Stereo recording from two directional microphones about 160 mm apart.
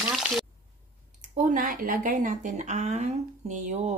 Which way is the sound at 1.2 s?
55° right (ahead or behind).